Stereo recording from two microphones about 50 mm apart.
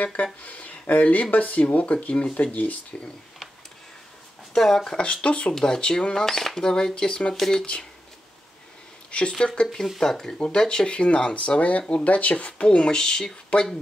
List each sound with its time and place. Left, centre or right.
0.0 s speech: left
4.6 s speech: centre
4.9 s speech: left
7.3 s speech: centre
9.4 s speech: centre
12.6 s speech: centre